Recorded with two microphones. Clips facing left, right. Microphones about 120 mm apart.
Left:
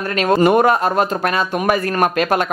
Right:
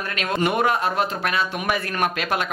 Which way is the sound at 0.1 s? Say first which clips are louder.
Left 10 dB; 35° left (ahead or behind).